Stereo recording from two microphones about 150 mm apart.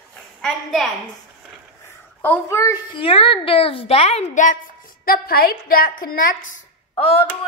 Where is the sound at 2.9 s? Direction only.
40° left (ahead or behind); by 4.6 s 55° left (ahead or behind).